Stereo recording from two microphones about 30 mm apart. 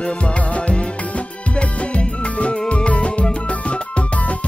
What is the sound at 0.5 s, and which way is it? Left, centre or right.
Music, left.